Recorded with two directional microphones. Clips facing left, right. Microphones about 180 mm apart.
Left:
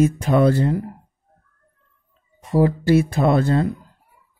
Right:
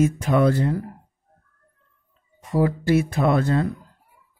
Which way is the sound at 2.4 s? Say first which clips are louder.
Left 3 dB; 30° left (ahead or behind).